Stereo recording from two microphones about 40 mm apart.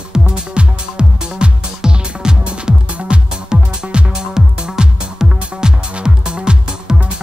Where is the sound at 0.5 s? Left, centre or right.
Right.